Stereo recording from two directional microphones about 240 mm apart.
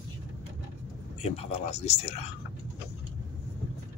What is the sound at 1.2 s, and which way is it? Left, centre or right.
Speech, left.